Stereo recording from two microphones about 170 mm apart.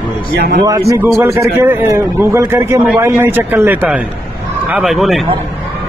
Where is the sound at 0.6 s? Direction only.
20° right (ahead or behind); by 5.3 s centre (ahead or behind).